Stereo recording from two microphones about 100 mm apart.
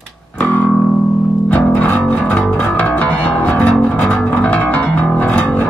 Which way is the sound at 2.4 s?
Centre (ahead or behind).